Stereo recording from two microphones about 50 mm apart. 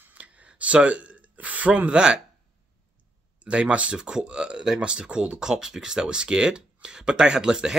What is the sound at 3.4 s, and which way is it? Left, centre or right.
Speech, right.